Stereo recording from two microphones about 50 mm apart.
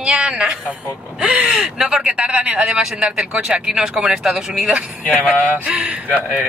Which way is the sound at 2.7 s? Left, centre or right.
Centre.